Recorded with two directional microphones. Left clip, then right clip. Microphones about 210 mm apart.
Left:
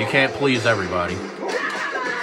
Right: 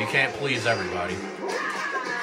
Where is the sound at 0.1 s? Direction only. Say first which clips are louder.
Left 6 dB; 25° left (ahead or behind).